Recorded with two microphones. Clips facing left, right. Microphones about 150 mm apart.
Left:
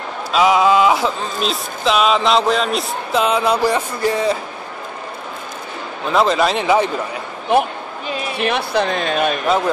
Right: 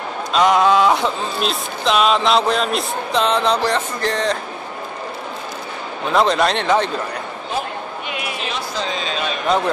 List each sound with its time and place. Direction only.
0.3 s speech: centre (ahead or behind)
6.1 s speech: centre (ahead or behind)
8.4 s speech: 60° left (ahead or behind)